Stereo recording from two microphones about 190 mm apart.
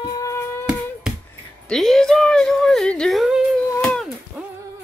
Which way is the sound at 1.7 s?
Centre (ahead or behind).